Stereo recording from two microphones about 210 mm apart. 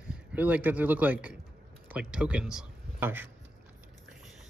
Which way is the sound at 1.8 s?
5° right (ahead or behind).